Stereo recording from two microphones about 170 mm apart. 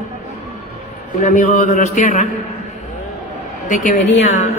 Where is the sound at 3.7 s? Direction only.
50° left (ahead or behind).